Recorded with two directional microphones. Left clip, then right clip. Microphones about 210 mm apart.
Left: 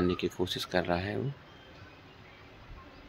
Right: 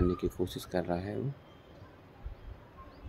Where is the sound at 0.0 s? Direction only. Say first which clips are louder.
Left 1 dB; 5° right (ahead or behind).